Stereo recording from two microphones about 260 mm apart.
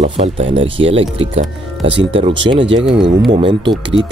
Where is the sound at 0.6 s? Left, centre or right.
Right.